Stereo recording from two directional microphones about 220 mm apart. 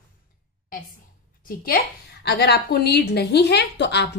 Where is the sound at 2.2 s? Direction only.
50° left (ahead or behind).